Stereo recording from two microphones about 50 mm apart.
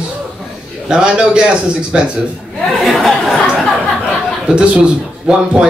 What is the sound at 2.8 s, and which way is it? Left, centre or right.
Speech, centre.